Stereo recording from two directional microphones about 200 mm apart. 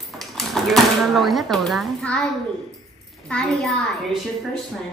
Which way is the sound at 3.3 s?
Centre (ahead or behind).